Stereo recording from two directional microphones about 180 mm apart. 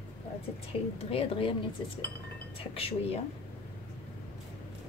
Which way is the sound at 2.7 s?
35° left (ahead or behind).